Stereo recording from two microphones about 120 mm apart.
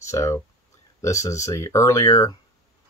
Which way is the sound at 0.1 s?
25° left (ahead or behind).